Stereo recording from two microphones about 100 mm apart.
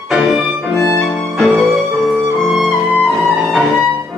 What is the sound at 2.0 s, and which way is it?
Music, 20° right (ahead or behind).